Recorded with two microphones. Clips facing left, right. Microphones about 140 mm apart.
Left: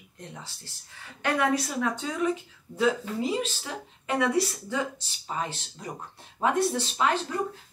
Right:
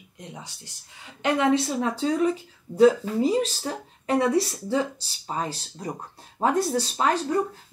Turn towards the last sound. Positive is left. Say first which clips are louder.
# right 3 dB
turn(degrees=-40)  # may be behind; listen again after turning